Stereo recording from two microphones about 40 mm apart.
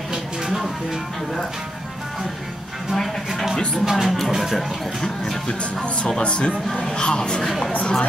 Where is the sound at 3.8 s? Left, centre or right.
Centre.